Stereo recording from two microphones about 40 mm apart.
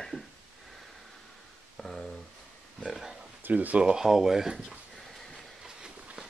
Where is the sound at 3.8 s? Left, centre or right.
Centre.